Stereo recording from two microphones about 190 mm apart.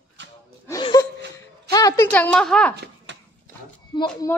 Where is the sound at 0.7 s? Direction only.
20° left (ahead or behind).